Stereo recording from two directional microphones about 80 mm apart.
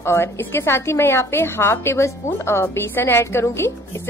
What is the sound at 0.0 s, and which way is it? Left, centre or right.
A woman's voice, left.